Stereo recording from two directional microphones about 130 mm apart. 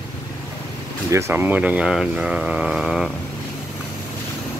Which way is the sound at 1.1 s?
20° right (ahead or behind).